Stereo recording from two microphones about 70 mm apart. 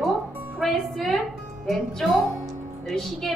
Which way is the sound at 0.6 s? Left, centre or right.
Centre.